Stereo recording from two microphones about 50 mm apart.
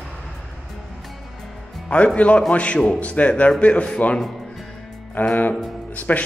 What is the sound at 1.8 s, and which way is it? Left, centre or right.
Speech, left.